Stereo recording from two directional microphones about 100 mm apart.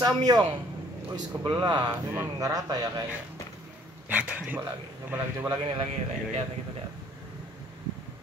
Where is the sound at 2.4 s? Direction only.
40° right (ahead or behind).